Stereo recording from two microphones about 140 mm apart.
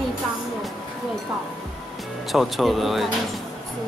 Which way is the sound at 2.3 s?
Centre (ahead or behind).